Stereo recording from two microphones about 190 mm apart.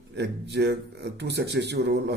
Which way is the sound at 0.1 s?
60° right (ahead or behind).